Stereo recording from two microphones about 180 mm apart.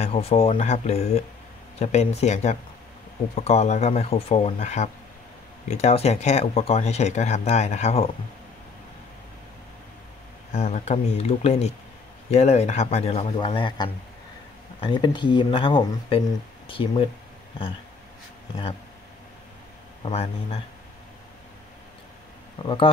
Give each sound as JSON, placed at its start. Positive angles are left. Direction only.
{"t": 0.0, "sound": "speech", "side_deg": 35}
{"t": 10.5, "sound": "speech", "side_deg": 40}
{"t": 20.1, "sound": "speech", "side_deg": 35}